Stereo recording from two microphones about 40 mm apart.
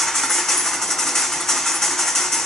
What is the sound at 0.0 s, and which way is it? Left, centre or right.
Engine, centre.